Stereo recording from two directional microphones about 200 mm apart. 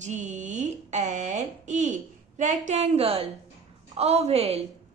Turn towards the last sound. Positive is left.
turn(degrees=-30)  # may be behind; listen again after turning